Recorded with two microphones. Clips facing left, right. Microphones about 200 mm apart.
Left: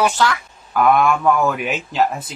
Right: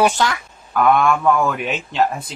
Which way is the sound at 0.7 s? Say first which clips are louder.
Even; 5° left (ahead or behind).